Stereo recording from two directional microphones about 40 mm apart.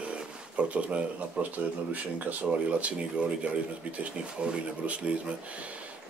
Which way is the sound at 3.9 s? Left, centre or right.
Right.